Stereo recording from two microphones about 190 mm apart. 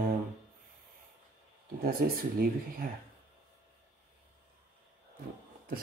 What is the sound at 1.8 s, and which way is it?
Speech, 50° right (ahead or behind).